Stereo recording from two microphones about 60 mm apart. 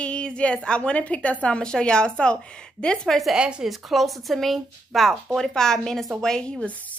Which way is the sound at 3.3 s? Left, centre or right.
Centre.